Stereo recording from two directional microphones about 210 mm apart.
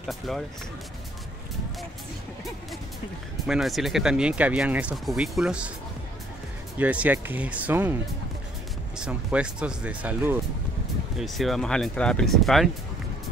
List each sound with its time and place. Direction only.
0.0 s speech: centre (ahead or behind)
3.4 s speech: centre (ahead or behind)
6.8 s speech: 5° right (ahead or behind)